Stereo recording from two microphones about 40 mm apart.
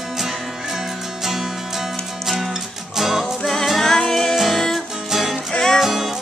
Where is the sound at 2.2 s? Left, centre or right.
Centre.